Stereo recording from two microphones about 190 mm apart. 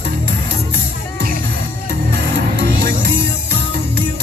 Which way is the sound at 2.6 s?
55° right (ahead or behind).